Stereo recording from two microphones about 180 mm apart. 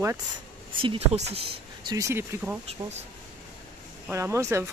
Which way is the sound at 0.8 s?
35° right (ahead or behind).